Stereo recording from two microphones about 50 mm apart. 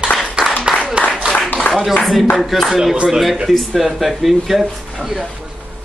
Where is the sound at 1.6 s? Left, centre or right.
Left.